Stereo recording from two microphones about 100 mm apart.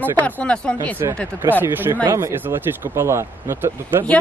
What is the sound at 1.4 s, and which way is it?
Speech, 20° right (ahead or behind).